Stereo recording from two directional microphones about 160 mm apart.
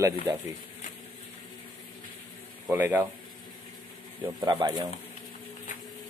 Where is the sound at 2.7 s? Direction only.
10° right (ahead or behind).